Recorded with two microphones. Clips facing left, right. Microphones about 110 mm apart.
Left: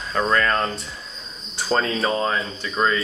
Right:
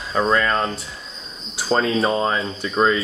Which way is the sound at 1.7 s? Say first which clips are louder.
Right 3 dB; 5° right (ahead or behind).